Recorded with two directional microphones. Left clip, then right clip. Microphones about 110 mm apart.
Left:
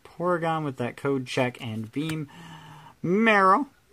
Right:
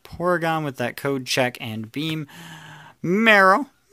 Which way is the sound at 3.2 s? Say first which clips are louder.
Right 5 dB; 25° right (ahead or behind).